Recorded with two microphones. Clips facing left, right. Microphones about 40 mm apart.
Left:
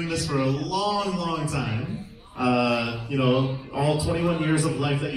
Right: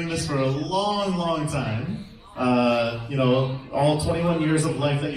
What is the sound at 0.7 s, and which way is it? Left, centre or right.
Speech, right.